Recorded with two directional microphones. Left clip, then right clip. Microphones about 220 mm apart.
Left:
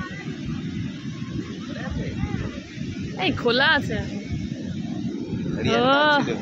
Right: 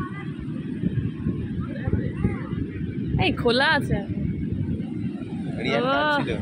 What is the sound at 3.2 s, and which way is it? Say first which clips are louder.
Speech: left 1 dB; 10° right (ahead or behind).